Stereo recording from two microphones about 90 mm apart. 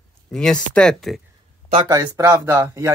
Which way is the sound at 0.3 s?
10° left (ahead or behind).